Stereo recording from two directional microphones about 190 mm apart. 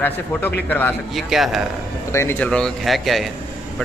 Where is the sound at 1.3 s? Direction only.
Centre (ahead or behind).